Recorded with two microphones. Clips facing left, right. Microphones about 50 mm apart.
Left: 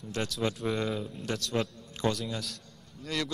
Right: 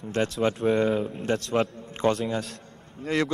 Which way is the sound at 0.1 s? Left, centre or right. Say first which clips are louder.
Right 7 dB; right.